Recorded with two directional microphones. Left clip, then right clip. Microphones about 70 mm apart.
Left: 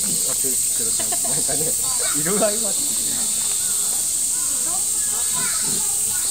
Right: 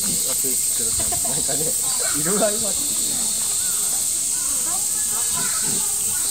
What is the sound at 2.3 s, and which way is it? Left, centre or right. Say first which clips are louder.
Speech: even; left.